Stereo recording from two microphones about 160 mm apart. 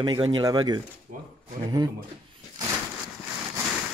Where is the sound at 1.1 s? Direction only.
55° right (ahead or behind).